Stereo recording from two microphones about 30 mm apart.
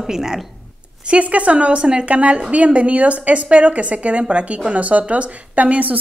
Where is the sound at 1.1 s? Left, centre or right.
Right.